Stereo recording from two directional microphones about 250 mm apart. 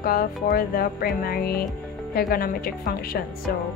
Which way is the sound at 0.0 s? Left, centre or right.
Left.